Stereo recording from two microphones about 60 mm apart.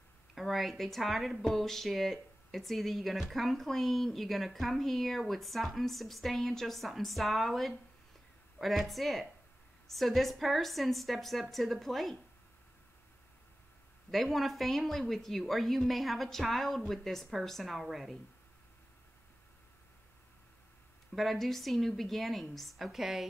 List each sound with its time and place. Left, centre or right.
0.3 s speech: centre
14.1 s speech: centre
21.1 s speech: centre